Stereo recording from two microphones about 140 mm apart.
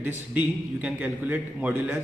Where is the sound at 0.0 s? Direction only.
10° right (ahead or behind).